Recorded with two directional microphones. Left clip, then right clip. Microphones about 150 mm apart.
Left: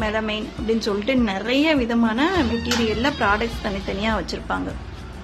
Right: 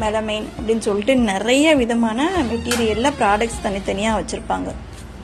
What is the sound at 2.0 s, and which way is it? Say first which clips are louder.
Speech: right 1 dB; 5° right (ahead or behind).